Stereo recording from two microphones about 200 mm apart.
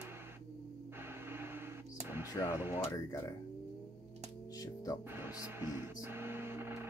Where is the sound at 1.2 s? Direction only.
10° right (ahead or behind).